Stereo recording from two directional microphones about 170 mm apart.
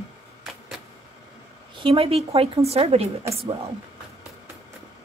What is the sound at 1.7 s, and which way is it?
A woman's voice, 30° right (ahead or behind).